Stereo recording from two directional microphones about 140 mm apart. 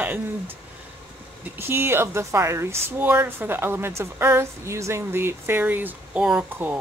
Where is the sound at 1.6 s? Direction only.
15° right (ahead or behind).